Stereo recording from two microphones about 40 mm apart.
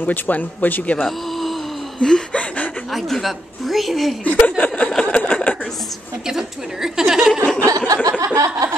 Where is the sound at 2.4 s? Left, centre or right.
Left.